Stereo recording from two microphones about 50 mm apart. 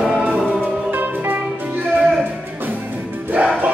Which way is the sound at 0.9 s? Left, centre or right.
Right.